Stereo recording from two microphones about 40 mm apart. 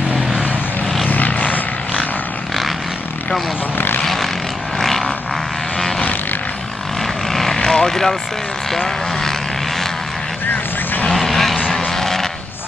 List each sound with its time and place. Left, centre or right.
0.1 s vehicle: right
1.0 s vehicle: left
3.7 s vehicle: left
4.0 s vehicle: centre
4.7 s a sound: centre
7.0 s vehicle: centre
10.5 s vehicle: left
11.1 s vehicle: centre
11.7 s a sound: centre